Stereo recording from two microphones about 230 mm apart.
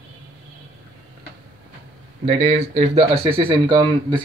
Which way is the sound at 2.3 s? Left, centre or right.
Right.